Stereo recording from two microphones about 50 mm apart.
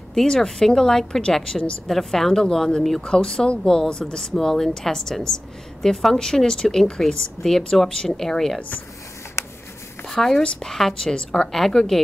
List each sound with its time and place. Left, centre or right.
0.1 s a woman's voice: centre
8.5 s speech: left
10.0 s a woman's voice: centre